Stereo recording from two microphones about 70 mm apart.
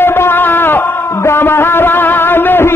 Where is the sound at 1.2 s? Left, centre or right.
Left.